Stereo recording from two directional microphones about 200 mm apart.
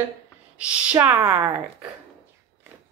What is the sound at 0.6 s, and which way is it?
Speech, 5° right (ahead or behind).